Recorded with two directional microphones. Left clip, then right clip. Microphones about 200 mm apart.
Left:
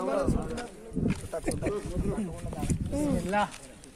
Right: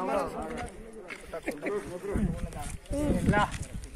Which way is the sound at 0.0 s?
50° left (ahead or behind).